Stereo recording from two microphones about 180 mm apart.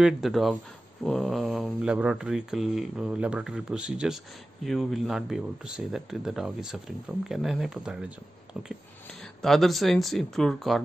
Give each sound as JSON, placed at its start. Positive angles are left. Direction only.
{"t": 0.0, "sound": "speech", "side_deg": 0}
{"t": 9.2, "sound": "speech", "side_deg": 0}